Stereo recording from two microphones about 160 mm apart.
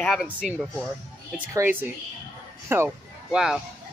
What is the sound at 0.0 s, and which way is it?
Speech, centre (ahead or behind).